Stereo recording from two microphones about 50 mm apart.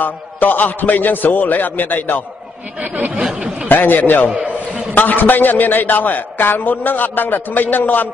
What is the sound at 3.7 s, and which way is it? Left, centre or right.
A man's voice, left.